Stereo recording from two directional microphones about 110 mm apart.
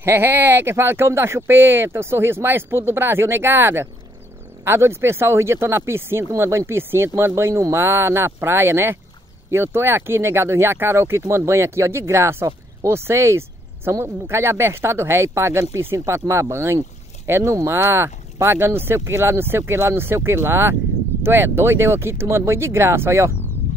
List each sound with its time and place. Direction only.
0.0 s speech: 20° right (ahead or behind)